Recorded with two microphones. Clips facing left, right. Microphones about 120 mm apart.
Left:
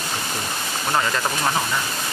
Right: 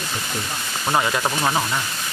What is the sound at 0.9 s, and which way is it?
Speech, 15° right (ahead or behind).